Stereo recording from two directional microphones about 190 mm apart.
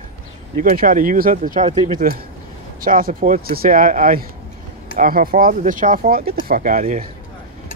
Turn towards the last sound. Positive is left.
turn(degrees=-45)  # may be behind; listen again after turning